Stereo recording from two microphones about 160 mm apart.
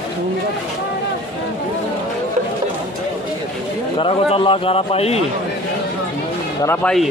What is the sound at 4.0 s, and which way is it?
A man's voice, 35° left (ahead or behind).